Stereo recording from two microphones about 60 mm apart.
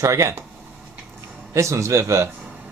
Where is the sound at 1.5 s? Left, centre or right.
Right.